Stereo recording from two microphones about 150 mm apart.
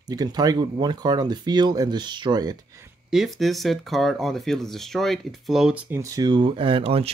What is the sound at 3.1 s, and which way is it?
Speech, centre (ahead or behind).